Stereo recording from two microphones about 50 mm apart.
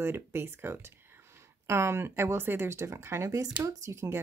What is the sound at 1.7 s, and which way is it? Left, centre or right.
Speech, right.